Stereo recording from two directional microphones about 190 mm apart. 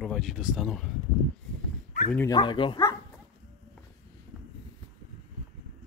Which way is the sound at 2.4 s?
25° left (ahead or behind).